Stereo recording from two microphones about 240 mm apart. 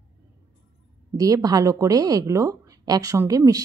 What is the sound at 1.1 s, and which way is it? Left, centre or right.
Speech, centre.